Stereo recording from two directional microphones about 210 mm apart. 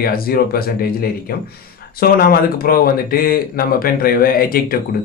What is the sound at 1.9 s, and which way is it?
Speech, 45° left (ahead or behind).